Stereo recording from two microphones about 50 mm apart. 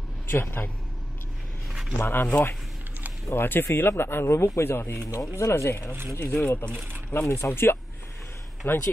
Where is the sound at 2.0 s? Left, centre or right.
Left.